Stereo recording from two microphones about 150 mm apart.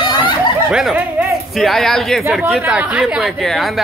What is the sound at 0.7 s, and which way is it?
Speech, 5° right (ahead or behind).